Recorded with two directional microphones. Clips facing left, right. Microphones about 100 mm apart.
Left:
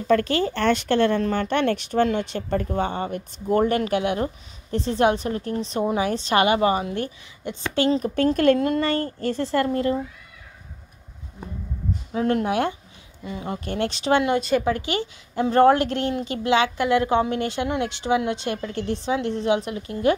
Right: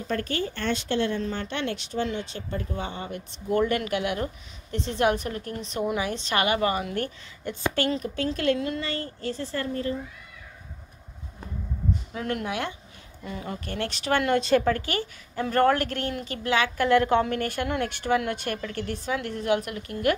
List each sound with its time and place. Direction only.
0.1 s a woman's voice: 90° left; by 8.0 s 25° left (ahead or behind)
8.1 s a woman's voice: 50° left (ahead or behind)
9.4 s a woman's voice: 75° left (ahead or behind)
12.1 s speech: 30° left (ahead or behind)
13.2 s a woman's voice: 20° left (ahead or behind)
14.0 s speech: 20° left (ahead or behind)
14.4 s speech: 5° left (ahead or behind)
14.7 s a woman's voice: 20° left (ahead or behind)